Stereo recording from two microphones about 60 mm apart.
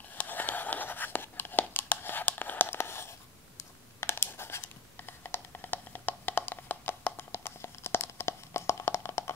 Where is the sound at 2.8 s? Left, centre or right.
Left.